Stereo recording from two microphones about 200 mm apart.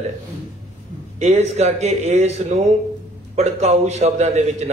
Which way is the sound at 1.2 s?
35° right (ahead or behind).